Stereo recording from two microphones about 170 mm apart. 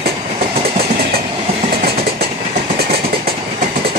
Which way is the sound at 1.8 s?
65° right (ahead or behind).